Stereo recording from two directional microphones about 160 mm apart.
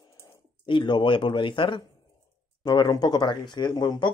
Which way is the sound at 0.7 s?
30° left (ahead or behind).